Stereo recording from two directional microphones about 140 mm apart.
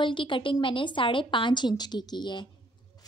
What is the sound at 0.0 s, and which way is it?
A woman's voice, 35° left (ahead or behind).